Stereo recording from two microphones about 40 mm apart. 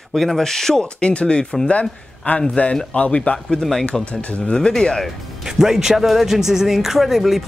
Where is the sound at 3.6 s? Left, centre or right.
Centre.